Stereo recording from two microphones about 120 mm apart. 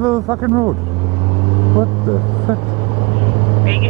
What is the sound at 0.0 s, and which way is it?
Speech, 20° right (ahead or behind).